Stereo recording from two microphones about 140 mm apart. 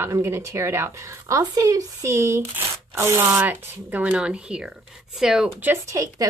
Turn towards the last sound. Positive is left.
turn(degrees=-20)  # may be behind; listen again after turning